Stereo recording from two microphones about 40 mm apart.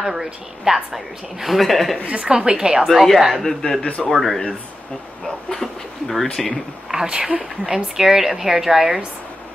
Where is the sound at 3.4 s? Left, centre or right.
Centre.